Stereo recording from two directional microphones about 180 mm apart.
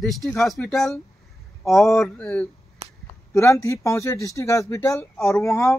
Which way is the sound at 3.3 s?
15° left (ahead or behind).